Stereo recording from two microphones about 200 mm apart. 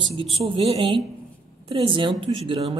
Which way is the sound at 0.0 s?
25° right (ahead or behind).